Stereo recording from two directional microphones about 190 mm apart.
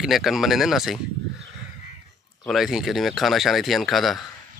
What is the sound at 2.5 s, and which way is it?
Speech, centre (ahead or behind).